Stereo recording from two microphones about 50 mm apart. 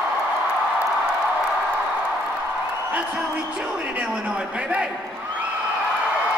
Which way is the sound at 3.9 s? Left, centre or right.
Right.